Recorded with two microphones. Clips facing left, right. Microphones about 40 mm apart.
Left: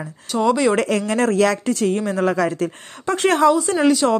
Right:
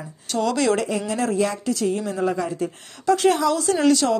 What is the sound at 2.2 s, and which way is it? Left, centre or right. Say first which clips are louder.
Speech: left 6 dB; left.